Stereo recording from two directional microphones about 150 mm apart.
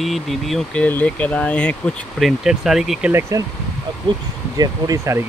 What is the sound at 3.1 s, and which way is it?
Speech, 20° right (ahead or behind).